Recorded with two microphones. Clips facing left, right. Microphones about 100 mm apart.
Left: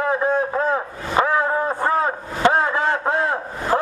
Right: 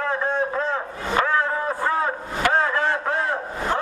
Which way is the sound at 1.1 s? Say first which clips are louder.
Left 3 dB; 20° left (ahead or behind).